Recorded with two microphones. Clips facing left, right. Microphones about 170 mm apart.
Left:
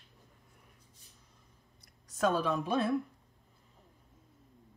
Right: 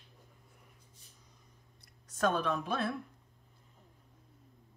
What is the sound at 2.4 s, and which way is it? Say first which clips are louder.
Speech: left 3 dB; 15° left (ahead or behind).